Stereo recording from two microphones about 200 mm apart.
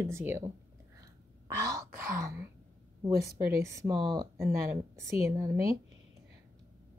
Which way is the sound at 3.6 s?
15° right (ahead or behind).